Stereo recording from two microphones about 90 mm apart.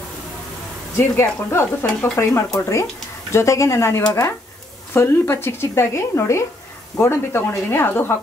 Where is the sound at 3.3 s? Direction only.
30° left (ahead or behind).